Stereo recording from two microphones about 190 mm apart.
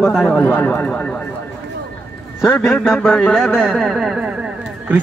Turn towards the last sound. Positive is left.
turn(degrees=-5)  # may be behind; listen again after turning